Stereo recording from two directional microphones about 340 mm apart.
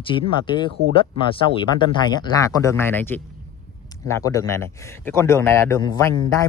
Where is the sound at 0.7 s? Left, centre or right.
Right.